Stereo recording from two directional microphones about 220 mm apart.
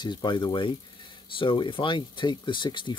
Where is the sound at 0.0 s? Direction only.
20° left (ahead or behind).